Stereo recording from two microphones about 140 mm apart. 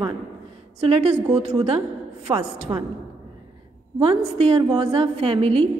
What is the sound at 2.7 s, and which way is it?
Speech, 25° right (ahead or behind).